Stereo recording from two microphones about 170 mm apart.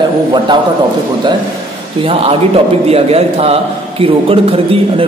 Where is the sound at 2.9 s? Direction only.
35° right (ahead or behind).